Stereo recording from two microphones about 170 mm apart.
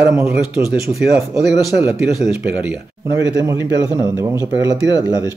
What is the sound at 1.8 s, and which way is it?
Speech, 5° right (ahead or behind).